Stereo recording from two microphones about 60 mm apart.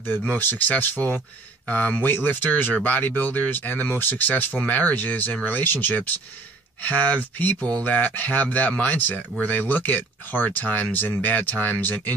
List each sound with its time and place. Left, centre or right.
0.4 s speech: left